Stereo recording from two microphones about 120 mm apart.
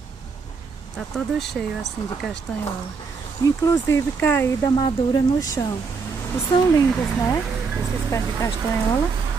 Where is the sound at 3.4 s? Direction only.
30° left (ahead or behind).